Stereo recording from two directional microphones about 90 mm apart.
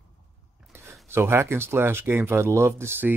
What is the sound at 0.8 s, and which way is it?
Speech, 25° right (ahead or behind).